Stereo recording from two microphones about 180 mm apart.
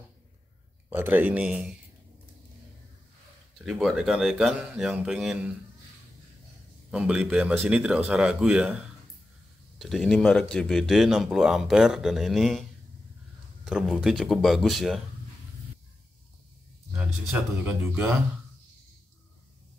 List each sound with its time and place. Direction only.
0.8 s speech: 10° right (ahead or behind)
3.5 s speech: centre (ahead or behind)
6.9 s speech: 5° right (ahead or behind)
9.8 s speech: centre (ahead or behind)
13.7 s speech: centre (ahead or behind)
16.9 s speech: 5° right (ahead or behind)